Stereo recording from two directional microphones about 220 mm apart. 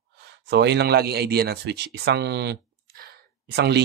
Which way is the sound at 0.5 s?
50° right (ahead or behind).